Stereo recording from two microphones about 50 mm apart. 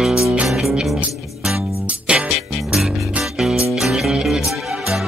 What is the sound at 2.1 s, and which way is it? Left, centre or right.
Music, right.